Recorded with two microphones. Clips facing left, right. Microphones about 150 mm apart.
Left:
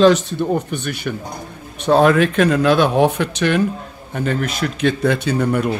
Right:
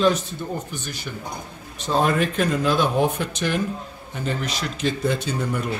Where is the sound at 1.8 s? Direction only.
75° left (ahead or behind).